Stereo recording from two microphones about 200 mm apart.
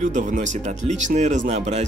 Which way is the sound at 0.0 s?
40° right (ahead or behind).